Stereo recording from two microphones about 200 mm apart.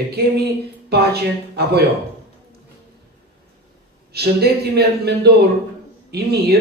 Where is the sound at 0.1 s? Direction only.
50° right (ahead or behind).